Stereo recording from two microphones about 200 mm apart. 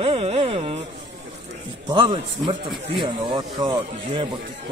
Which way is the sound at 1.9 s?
20° right (ahead or behind).